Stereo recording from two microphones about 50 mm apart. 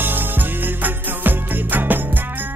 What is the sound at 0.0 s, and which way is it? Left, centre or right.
Music, right.